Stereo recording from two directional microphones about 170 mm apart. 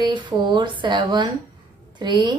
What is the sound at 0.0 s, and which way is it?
A woman's voice, 25° right (ahead or behind).